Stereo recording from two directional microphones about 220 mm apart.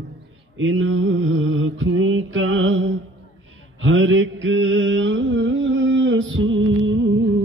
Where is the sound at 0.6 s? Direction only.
60° right (ahead or behind).